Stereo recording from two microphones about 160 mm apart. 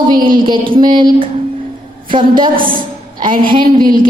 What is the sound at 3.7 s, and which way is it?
Speech, 60° right (ahead or behind).